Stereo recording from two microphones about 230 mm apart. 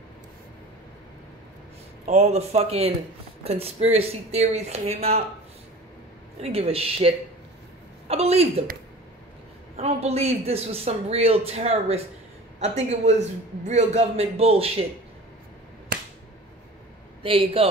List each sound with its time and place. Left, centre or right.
2.0 s a man's voice: right
6.4 s a man's voice: right
8.1 s a man's voice: right
9.8 s a man's voice: right
17.2 s a man's voice: right